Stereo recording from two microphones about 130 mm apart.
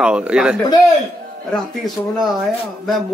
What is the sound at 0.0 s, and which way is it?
Speech, 5° right (ahead or behind).